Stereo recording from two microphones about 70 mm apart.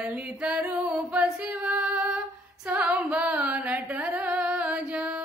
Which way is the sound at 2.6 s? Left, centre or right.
Centre.